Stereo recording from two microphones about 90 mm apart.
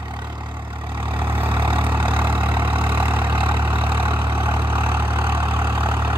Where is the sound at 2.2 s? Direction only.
25° right (ahead or behind).